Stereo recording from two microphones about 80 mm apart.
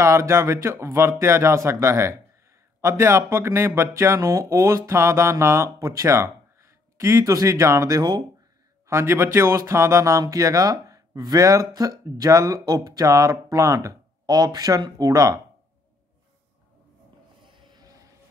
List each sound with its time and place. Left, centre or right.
0.0 s speech: right
14.3 s speech: right
17.5 s a sound: right